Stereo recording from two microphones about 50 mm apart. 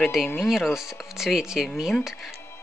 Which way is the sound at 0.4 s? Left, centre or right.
Centre.